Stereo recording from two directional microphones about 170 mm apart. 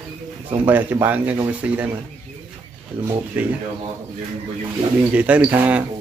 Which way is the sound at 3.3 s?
10° right (ahead or behind).